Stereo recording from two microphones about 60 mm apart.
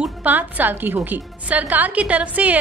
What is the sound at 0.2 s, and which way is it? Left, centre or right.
A woman's voice, right.